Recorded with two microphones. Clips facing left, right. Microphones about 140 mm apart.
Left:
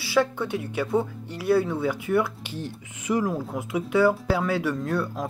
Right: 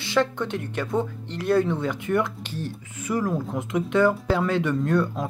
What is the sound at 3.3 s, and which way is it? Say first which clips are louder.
Speech: right 2 dB; 5° left (ahead or behind).